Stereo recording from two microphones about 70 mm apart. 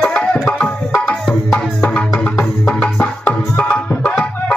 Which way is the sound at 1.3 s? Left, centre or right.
Centre.